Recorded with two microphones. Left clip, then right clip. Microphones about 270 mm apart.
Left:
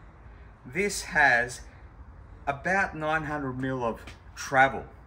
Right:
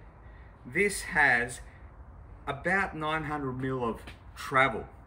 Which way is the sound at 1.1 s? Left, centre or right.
Centre.